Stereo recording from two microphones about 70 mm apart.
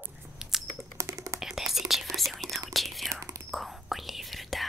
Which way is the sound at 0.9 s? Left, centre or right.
Right.